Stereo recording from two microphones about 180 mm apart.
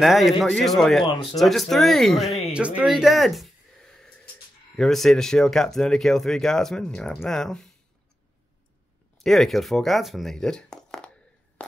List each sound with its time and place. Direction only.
0.0 s speech: centre (ahead or behind)
1.0 s speech: 25° left (ahead or behind)
1.4 s speech: centre (ahead or behind)
4.7 s speech: centre (ahead or behind)
9.2 s speech: centre (ahead or behind)